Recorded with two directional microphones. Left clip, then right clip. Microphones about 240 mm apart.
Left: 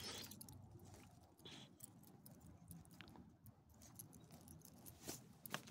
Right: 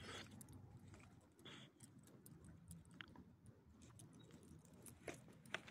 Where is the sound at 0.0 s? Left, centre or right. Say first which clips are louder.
Left 3 dB; centre.